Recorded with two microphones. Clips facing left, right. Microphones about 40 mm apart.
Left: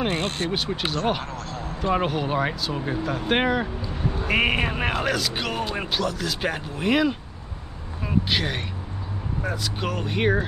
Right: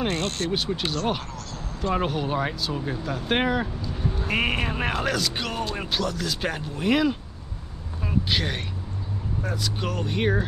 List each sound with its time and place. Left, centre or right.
0.1 s speech: centre
8.3 s speech: centre